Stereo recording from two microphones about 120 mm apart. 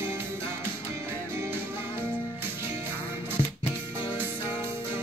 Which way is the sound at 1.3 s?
20° right (ahead or behind).